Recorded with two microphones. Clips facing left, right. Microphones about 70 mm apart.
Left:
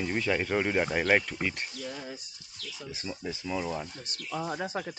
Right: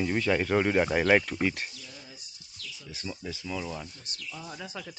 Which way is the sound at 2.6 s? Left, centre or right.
Left.